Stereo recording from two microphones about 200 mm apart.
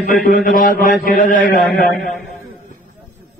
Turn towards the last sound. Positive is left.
turn(degrees=45)  # may be behind; listen again after turning